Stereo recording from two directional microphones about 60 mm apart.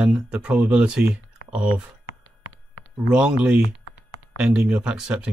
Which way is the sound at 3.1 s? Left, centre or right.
Centre.